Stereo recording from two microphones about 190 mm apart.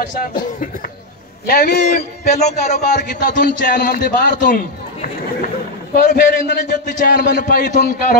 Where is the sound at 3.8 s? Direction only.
50° left (ahead or behind).